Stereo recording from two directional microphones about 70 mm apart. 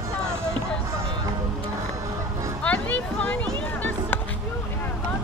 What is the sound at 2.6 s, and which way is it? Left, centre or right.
Music, centre.